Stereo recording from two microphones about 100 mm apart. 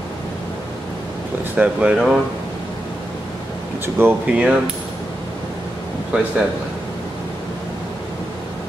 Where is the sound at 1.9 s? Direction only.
5° right (ahead or behind).